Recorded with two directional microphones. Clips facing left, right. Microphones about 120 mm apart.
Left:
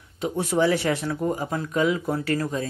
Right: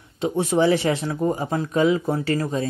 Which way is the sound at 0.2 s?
25° right (ahead or behind).